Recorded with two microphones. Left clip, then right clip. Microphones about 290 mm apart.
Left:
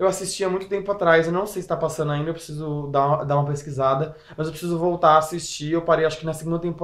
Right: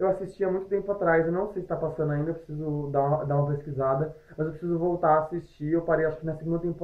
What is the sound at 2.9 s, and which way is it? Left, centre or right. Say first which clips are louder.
Speech: left 6 dB; centre.